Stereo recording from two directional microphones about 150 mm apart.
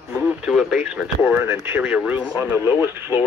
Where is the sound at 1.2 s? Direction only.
15° right (ahead or behind).